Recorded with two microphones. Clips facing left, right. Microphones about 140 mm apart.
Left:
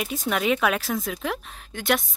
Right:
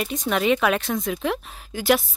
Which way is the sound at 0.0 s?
5° left (ahead or behind).